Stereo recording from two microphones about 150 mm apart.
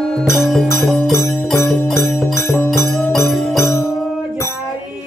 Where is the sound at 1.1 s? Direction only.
20° left (ahead or behind).